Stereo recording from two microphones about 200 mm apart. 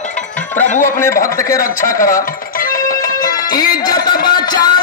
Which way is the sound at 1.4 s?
15° left (ahead or behind).